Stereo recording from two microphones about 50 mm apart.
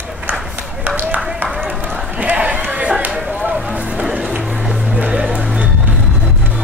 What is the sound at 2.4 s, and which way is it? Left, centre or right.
Chatter, centre.